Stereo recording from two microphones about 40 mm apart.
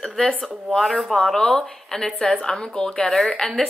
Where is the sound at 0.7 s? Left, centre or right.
Centre; by 3.1 s left.